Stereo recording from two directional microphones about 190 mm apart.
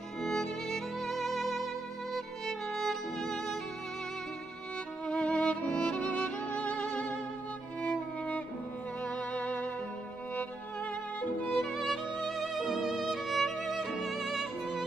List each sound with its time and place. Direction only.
0.2 s music: centre (ahead or behind)
2.1 s violin: centre (ahead or behind)
5.0 s music: 5° left (ahead or behind)
11.1 s music: 5° left (ahead or behind)